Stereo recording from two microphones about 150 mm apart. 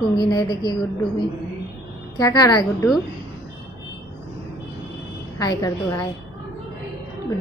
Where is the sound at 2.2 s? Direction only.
25° left (ahead or behind).